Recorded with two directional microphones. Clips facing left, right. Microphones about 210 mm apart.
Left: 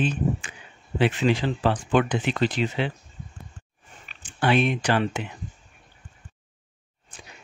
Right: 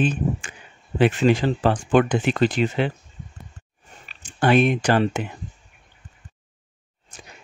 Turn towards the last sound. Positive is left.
turn(degrees=-45)  # may be behind; listen again after turning